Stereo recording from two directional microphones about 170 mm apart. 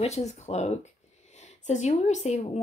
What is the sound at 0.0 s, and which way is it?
Speech, 40° left (ahead or behind).